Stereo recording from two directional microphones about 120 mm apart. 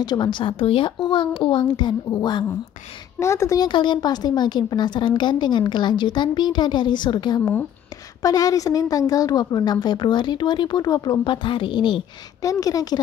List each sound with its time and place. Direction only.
0.0 s a woman's voice: 40° left (ahead or behind)
2.0 s a woman's voice: 25° left (ahead or behind)
3.6 s a woman's voice: 40° left (ahead or behind)
12.4 s a woman's voice: 30° left (ahead or behind)